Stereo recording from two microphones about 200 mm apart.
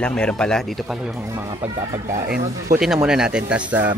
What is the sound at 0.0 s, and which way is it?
Speech, 5° left (ahead or behind).